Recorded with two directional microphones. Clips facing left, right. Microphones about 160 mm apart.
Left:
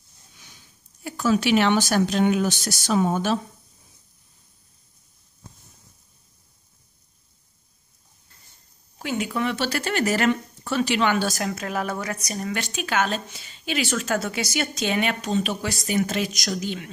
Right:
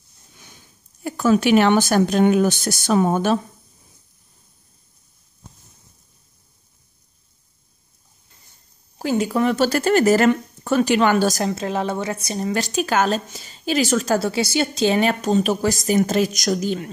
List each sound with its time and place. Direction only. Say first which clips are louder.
0.4 s speech: right 5 dB; 50° right (ahead or behind)
8.9 s speech: right 6 dB; 35° right (ahead or behind)
11.4 s speech: right 5 dB; 25° right (ahead or behind)